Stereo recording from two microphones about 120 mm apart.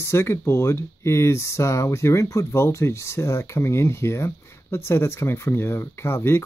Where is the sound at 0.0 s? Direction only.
20° left (ahead or behind).